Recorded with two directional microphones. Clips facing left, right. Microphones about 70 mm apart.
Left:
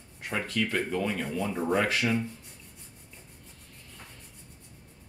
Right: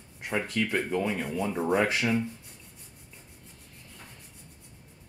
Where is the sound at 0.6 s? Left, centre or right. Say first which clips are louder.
Even; centre.